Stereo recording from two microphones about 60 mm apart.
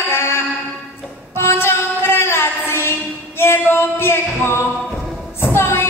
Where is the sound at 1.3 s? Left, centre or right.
Left.